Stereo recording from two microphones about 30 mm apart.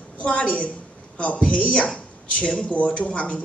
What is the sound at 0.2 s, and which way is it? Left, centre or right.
A man's voice, left.